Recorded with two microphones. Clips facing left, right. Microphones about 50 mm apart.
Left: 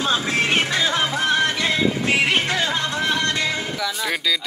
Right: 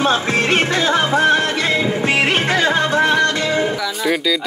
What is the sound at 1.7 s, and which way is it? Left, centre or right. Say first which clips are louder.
Music: right 3 dB; right.